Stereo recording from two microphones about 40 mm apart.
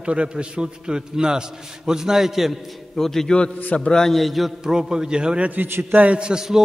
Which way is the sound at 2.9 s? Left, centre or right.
Centre.